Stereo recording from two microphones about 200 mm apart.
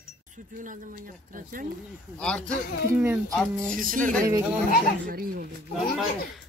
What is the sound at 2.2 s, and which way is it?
Speech, 5° left (ahead or behind).